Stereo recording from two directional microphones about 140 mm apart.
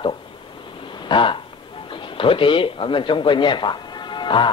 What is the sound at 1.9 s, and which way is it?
Speech, 35° left (ahead or behind).